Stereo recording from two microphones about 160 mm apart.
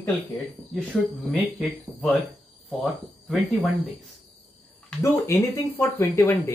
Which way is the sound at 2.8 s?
5° left (ahead or behind).